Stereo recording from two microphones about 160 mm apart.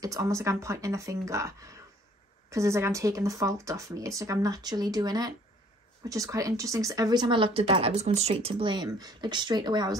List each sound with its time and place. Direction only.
0.0 s speech: 20° right (ahead or behind)